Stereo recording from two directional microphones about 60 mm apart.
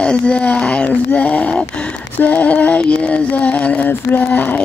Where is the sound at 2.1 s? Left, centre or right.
Left.